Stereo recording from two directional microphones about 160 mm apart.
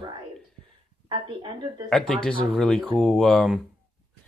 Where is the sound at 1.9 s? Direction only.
5° left (ahead or behind).